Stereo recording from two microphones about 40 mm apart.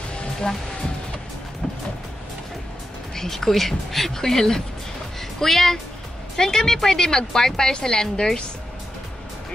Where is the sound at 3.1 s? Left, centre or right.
Centre.